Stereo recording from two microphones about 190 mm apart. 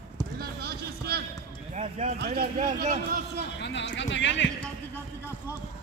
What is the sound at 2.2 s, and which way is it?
A man's voice, 50° right (ahead or behind).